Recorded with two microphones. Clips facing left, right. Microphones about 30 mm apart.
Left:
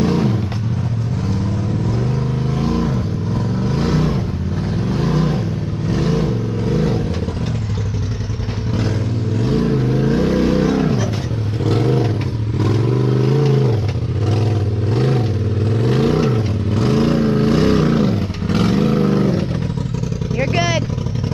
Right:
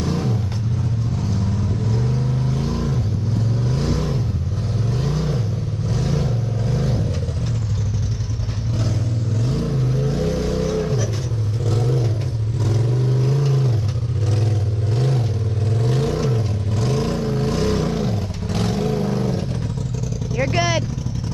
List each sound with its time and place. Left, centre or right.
0.0 s vehicle: left
2.5 s vehicle: left
9.4 s vehicle: left
11.7 s vehicle: left
15.0 s vehicle: left